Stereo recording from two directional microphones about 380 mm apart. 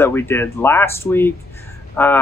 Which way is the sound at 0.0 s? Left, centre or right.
Centre.